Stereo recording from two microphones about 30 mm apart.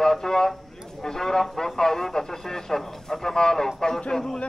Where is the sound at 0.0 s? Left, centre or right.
Centre.